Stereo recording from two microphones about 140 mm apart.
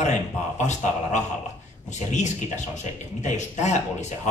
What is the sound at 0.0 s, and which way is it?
A man's voice, 55° left (ahead or behind).